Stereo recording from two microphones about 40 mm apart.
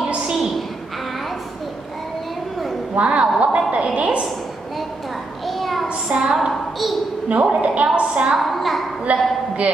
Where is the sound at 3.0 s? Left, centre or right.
Right.